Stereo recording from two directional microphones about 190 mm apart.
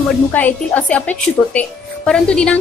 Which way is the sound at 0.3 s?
10° left (ahead or behind).